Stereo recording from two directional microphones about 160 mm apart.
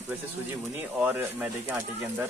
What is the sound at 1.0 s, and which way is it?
Speech, 10° right (ahead or behind).